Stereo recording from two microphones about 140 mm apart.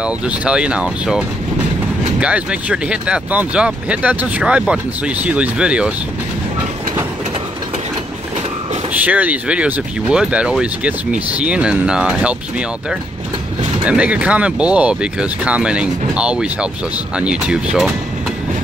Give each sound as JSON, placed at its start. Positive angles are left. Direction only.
{"t": 0.0, "sound": "speech", "side_deg": -5}
{"t": 8.9, "sound": "speech", "side_deg": -10}
{"t": 13.8, "sound": "speech", "side_deg": -10}